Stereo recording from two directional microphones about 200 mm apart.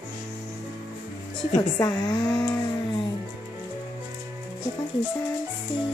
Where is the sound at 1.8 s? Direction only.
20° left (ahead or behind).